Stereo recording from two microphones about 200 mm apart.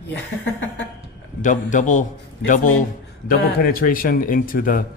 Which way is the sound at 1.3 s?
40° left (ahead or behind).